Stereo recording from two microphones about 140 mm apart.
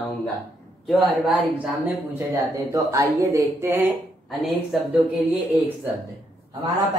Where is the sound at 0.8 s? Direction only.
Centre (ahead or behind).